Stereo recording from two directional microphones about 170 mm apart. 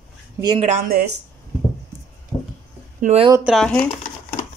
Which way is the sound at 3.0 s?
35° right (ahead or behind).